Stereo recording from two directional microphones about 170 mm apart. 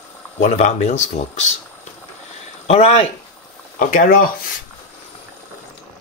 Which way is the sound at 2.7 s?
35° left (ahead or behind).